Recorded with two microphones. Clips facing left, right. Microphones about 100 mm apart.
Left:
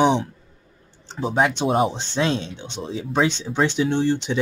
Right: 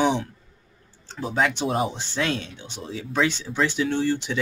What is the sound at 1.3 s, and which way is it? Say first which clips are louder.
Speech: left 4 dB; 20° left (ahead or behind).